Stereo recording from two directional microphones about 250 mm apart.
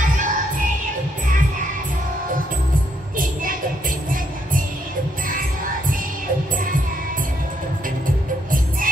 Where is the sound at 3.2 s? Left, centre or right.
Right.